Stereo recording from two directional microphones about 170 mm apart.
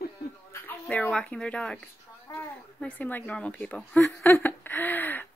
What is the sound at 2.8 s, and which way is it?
A woman's voice, 10° left (ahead or behind).